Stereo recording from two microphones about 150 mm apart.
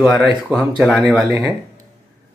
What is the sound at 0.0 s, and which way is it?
Speech, centre (ahead or behind).